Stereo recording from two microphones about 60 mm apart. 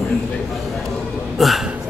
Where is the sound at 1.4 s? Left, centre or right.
Centre.